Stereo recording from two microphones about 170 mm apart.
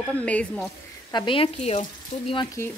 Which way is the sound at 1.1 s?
30° left (ahead or behind).